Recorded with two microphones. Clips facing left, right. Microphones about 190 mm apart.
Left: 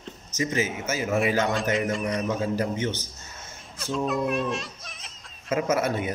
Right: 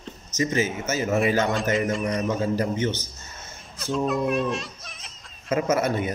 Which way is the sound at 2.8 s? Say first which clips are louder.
Right 3 dB; 40° right (ahead or behind).